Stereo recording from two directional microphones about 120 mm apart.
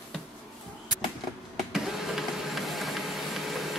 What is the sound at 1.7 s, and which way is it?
Printer, centre (ahead or behind).